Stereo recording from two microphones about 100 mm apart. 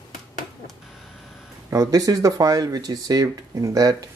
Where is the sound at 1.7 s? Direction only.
35° right (ahead or behind).